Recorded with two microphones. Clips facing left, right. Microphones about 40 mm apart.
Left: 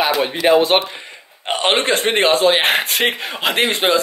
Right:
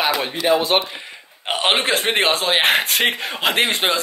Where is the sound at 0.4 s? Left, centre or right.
Left.